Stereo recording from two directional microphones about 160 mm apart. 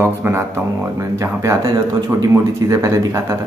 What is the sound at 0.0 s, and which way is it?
Speech, 15° right (ahead or behind).